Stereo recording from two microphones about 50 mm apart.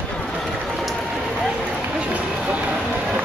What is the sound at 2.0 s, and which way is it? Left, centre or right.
Run, right.